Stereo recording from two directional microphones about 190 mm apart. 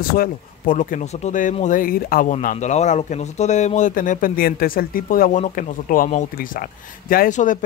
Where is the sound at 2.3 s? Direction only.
40° left (ahead or behind).